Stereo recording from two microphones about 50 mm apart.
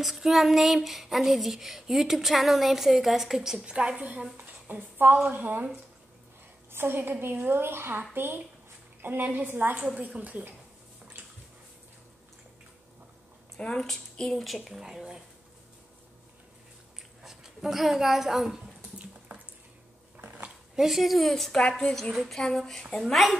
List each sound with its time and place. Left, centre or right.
0.0 s a sound: centre
3.7 s speech: right
4.4 s a woman's voice: right
6.7 s a woman's voice: right
9.8 s speech: right
13.6 s speech: centre
14.4 s speech: centre
17.2 s a woman's voice: centre
20.2 s dog: right
20.7 s a sound: centre
22.3 s a woman's voice: centre